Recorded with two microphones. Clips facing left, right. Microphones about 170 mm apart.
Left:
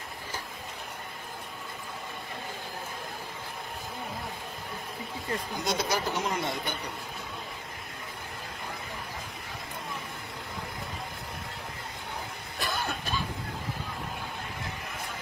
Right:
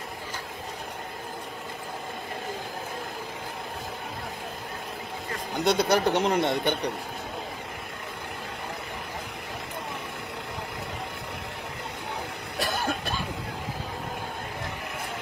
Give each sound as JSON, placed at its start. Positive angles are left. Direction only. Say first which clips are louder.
{"t": 5.6, "sound": "speech", "louder": "right 9 dB", "side_deg": -65}
{"t": 12.5, "sound": "cough", "louder": "right 4 dB", "side_deg": -80}